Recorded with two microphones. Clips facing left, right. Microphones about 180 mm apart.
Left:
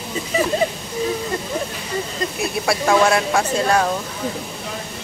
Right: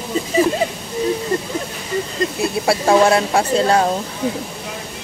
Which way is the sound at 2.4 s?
30° right (ahead or behind).